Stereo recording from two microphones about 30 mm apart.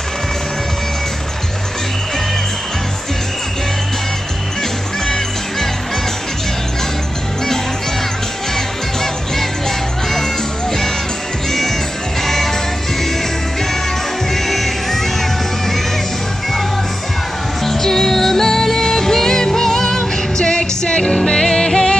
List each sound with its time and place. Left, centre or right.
5.0 s music: centre
8.5 s music: centre
12.2 s music: centre
14.3 s music: centre
17.6 s music: centre
20.4 s music: left